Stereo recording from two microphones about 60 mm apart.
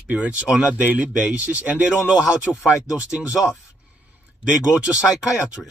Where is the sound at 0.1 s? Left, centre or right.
Right.